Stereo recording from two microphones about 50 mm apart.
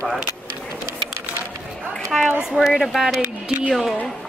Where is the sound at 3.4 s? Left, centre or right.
Right.